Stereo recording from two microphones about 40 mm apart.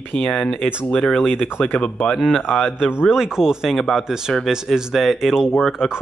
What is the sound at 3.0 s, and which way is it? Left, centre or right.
Speech, centre.